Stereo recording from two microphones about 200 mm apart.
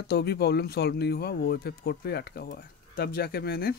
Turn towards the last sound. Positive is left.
turn(degrees=50)  # may be behind; listen again after turning